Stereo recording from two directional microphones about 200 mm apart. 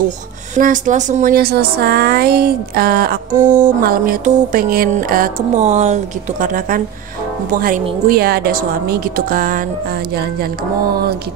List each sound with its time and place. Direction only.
0.6 s speech: 40° right (ahead or behind)